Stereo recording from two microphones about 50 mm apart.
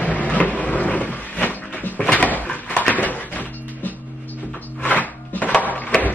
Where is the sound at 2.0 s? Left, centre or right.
Left.